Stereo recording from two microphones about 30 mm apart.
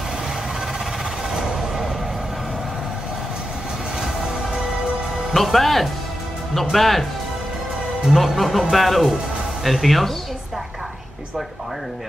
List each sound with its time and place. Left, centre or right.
1.3 s a sound: right
5.3 s speech: centre
8.1 s speech: centre